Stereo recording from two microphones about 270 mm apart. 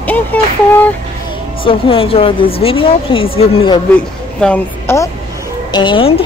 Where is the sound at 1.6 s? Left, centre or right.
Centre.